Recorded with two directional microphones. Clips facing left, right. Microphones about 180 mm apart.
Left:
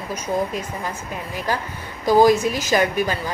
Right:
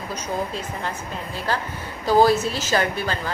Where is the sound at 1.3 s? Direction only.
15° left (ahead or behind).